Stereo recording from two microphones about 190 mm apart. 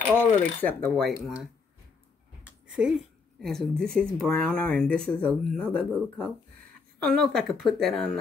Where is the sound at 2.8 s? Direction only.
5° right (ahead or behind).